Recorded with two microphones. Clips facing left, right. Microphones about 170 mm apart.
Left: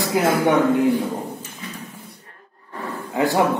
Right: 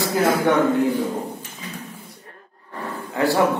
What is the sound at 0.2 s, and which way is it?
Speech, 15° left (ahead or behind).